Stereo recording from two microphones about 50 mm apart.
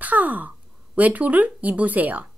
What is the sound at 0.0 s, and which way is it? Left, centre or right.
Sigh, right.